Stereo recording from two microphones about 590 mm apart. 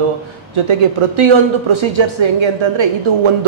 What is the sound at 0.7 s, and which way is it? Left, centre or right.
Speech, right.